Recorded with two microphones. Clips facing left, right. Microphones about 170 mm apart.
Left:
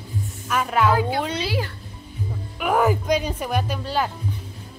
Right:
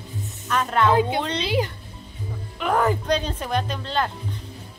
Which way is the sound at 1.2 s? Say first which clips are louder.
Left 1 dB; 10° left (ahead or behind).